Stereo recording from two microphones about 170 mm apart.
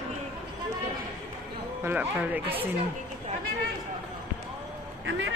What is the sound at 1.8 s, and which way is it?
Speech, 10° right (ahead or behind).